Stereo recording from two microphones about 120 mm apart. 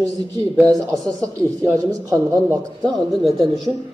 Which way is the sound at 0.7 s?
30° right (ahead or behind).